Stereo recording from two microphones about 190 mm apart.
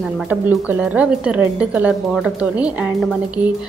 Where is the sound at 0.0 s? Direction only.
5° right (ahead or behind).